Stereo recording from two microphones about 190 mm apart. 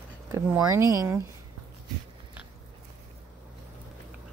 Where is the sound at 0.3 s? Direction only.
15° right (ahead or behind).